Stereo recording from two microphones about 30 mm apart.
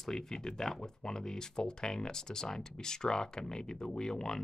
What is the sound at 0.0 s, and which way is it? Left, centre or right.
Speech, centre.